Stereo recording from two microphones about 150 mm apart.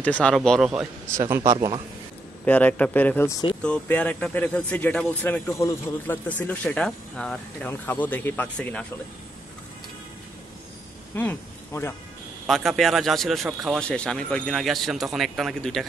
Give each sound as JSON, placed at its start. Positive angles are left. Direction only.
{"t": 0.0, "sound": "speech", "side_deg": 10}
{"t": 1.3, "sound": "speech", "side_deg": -20}
{"t": 2.4, "sound": "speech", "side_deg": 10}
{"t": 11.1, "sound": "speech", "side_deg": 15}
{"t": 12.4, "sound": "speech", "side_deg": 0}